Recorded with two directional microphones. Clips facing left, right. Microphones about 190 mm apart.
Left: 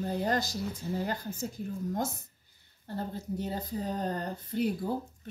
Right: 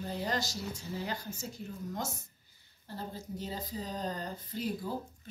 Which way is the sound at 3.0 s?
55° left (ahead or behind).